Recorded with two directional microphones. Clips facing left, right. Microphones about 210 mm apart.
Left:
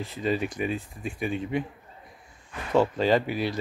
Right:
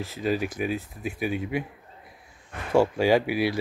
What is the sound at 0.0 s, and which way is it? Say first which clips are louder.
Speech: right 1 dB; 5° right (ahead or behind).